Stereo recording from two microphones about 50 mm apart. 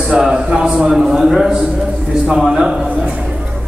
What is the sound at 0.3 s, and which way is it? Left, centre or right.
A man's voice, centre.